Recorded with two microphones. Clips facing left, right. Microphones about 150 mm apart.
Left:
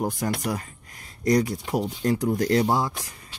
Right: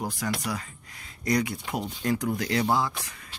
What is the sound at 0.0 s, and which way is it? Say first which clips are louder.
Speech: left 4 dB; 50° left (ahead or behind).